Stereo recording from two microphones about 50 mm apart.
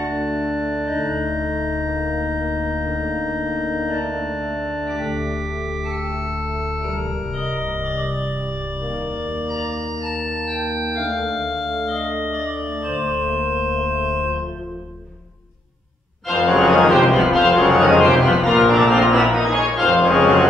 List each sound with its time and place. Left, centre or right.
0.1 s organ: centre
10.6 s organ: centre
13.2 s organ: centre
16.3 s organ: centre